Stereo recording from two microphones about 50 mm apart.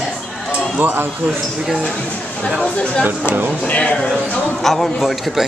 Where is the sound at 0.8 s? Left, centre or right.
Right.